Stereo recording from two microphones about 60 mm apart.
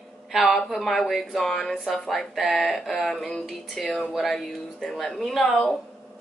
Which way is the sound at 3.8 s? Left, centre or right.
Centre.